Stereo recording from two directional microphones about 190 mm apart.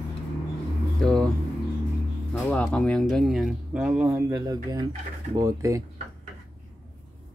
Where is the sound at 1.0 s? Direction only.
5° left (ahead or behind).